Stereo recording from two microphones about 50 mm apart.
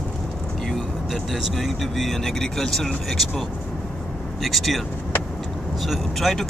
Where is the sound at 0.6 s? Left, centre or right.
Centre.